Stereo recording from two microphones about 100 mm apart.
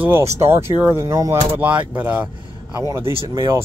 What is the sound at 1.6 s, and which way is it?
Speech, 15° right (ahead or behind).